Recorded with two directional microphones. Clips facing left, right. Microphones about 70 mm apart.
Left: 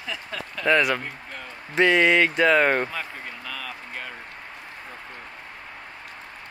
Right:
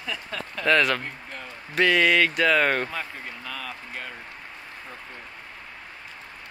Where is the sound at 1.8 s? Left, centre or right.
Left.